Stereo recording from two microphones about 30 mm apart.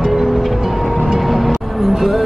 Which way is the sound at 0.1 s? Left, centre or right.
Centre.